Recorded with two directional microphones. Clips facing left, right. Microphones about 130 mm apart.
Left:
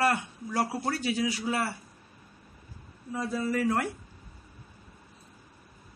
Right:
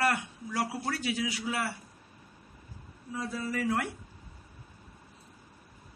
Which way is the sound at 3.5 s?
45° left (ahead or behind).